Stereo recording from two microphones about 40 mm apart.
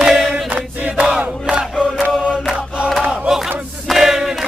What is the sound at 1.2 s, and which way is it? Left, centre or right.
Crowd, right.